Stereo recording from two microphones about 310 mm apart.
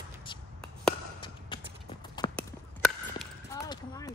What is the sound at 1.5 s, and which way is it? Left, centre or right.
Clip-clop, centre.